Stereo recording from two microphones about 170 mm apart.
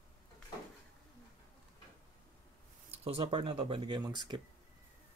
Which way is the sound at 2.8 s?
35° right (ahead or behind).